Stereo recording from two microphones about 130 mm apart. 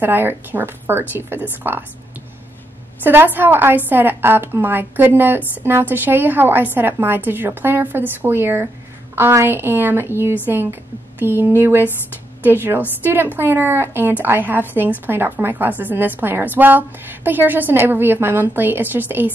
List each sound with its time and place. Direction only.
0.0 s a woman's voice: 15° right (ahead or behind)
3.0 s a woman's voice: 15° right (ahead or behind)